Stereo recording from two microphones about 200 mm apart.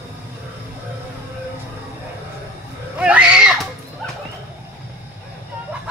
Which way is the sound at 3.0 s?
5° right (ahead or behind).